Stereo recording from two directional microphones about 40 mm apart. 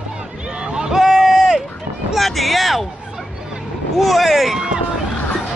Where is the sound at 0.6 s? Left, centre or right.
Centre.